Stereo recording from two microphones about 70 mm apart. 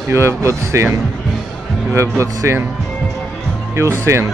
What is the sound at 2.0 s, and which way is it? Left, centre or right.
Speech, right.